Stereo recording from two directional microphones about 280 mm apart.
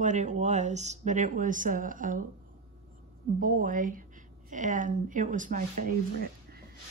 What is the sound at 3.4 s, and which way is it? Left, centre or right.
Speech, right.